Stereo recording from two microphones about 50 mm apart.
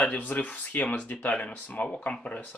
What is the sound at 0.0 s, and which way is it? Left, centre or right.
Speech, left.